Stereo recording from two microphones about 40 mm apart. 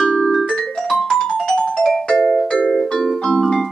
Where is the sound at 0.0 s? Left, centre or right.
Left.